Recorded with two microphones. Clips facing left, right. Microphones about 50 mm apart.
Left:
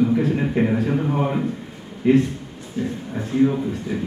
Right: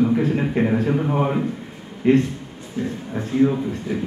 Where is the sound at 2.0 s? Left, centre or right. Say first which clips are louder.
Even; right.